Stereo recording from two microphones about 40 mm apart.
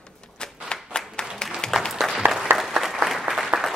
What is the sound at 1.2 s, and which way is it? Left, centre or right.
Applause, left.